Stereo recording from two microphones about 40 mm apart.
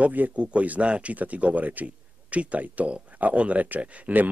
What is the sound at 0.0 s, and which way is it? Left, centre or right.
Speech, right.